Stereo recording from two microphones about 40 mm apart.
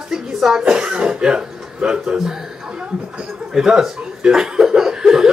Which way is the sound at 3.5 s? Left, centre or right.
Centre.